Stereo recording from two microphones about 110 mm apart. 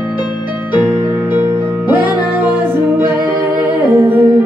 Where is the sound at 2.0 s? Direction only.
10° right (ahead or behind).